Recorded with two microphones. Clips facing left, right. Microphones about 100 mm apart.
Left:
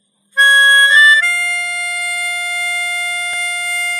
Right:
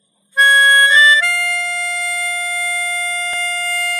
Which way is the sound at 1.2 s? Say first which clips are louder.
Even; 50° right (ahead or behind).